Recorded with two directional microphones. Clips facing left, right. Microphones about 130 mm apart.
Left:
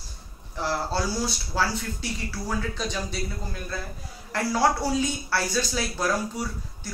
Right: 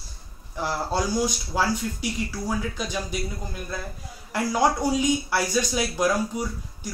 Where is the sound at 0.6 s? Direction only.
15° right (ahead or behind).